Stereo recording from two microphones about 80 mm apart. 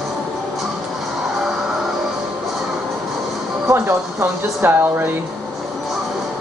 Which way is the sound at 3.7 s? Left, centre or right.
Right.